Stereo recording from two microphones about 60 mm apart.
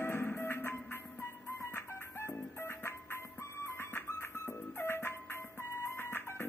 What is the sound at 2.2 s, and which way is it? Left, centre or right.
Music, left.